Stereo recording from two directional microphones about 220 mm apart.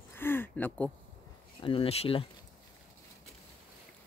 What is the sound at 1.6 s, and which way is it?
Speech, 25° left (ahead or behind).